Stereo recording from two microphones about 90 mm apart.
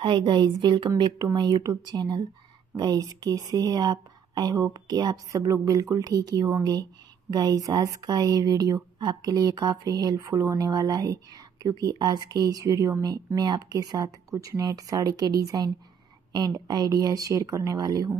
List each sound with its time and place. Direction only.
0.0 s a woman's voice: 65° right (ahead or behind); by 10.7 s 35° right (ahead or behind)
10.7 s speech: 50° right (ahead or behind)